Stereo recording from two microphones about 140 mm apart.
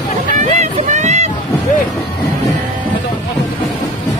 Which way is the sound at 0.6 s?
55° right (ahead or behind).